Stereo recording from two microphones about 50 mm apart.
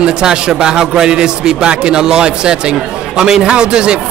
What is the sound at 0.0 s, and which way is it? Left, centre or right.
A man's voice, centre.